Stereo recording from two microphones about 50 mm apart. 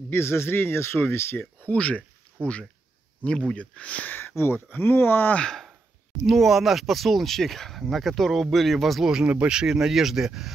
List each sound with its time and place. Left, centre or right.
0.1 s speech: left
1.4 s speech: left
4.6 s speech: left
6.2 s speech: centre
9.1 s speech: right
9.5 s speech: centre